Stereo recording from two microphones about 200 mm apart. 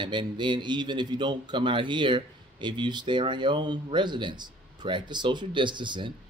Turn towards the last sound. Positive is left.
turn(degrees=-25)  # may be behind; listen again after turning